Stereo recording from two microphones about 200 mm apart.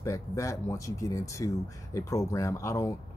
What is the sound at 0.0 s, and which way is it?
Speech, 15° left (ahead or behind).